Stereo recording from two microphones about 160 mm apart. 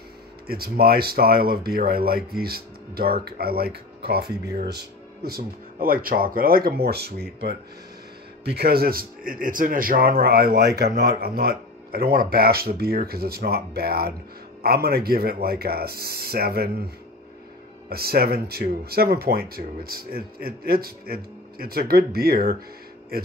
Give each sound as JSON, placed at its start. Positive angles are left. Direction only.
{"t": 0.5, "sound": "a man's voice", "side_deg": -70}
{"t": 4.6, "sound": "a man's voice", "side_deg": -90}